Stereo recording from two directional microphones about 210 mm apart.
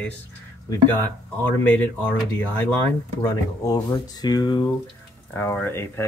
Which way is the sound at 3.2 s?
15° left (ahead or behind).